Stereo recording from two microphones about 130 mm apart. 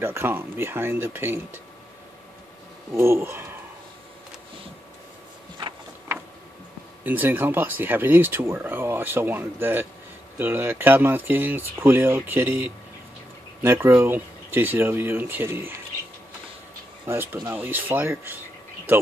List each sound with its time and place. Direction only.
0.0 s speech: 20° right (ahead or behind)
2.9 s speech: 20° right (ahead or behind)
7.1 s speech: 15° right (ahead or behind)
17.0 s speech: 15° right (ahead or behind)